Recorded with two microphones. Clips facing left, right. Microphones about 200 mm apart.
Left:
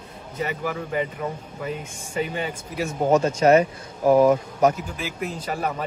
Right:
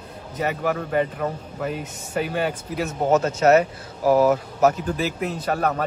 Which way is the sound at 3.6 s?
5° right (ahead or behind).